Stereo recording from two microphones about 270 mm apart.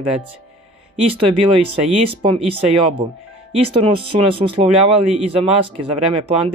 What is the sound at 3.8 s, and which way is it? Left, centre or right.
Speech, right.